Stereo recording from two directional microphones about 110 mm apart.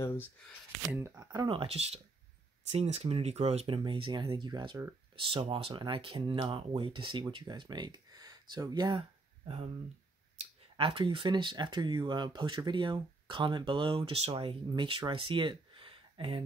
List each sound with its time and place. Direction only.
0.0 s speech: 20° left (ahead or behind)
0.8 s speech: 25° right (ahead or behind)
1.5 s speech: 60° right (ahead or behind)
2.7 s speech: 80° right
3.6 s speech: 50° right (ahead or behind)
10.8 s speech: 50° right (ahead or behind)